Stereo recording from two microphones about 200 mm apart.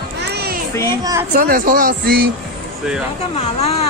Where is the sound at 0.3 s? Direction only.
50° right (ahead or behind).